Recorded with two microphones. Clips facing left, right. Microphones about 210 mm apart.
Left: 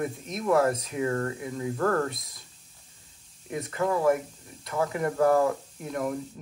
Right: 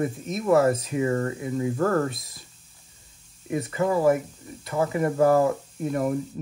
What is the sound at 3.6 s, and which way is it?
Speech, 5° right (ahead or behind).